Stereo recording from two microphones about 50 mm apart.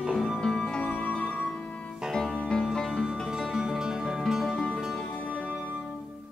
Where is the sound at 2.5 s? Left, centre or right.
Centre.